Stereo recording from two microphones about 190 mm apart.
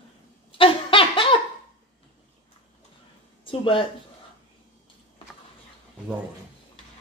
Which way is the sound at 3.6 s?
25° left (ahead or behind).